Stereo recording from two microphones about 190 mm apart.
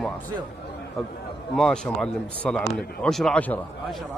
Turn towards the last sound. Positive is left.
turn(degrees=5)  # may be behind; listen again after turning